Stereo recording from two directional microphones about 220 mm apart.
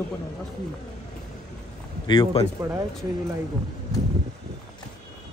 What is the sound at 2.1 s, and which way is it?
Speech, 20° left (ahead or behind).